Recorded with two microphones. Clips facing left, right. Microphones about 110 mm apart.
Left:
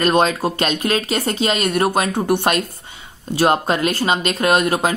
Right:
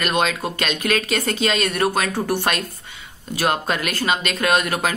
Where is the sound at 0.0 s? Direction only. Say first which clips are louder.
Left 5 dB; 35° left (ahead or behind).